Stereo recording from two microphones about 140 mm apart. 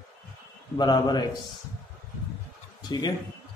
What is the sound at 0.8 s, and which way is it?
Speech, 30° left (ahead or behind).